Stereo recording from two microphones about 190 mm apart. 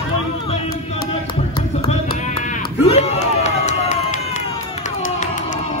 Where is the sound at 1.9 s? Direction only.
40° left (ahead or behind).